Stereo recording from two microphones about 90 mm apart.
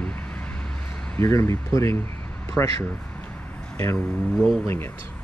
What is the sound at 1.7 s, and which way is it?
Speech, 35° left (ahead or behind).